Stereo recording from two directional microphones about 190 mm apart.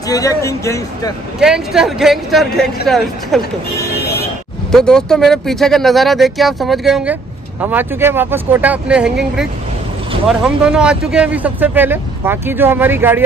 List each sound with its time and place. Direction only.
0.1 s a man's voice: 15° left (ahead or behind)
1.4 s speech: centre (ahead or behind)
4.6 s speech: 5° left (ahead or behind)